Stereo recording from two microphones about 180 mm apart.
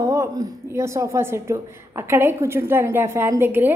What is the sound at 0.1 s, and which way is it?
A woman's voice, 15° right (ahead or behind).